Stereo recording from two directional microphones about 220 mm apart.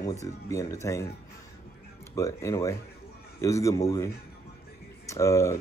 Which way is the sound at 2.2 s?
15° left (ahead or behind).